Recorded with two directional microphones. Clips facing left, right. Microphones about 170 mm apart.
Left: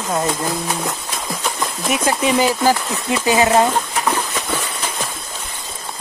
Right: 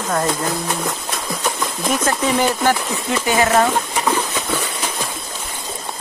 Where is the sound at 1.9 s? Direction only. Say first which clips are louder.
Left 1 dB; 10° left (ahead or behind).